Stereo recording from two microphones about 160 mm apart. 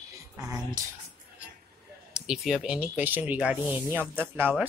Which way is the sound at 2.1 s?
5° right (ahead or behind).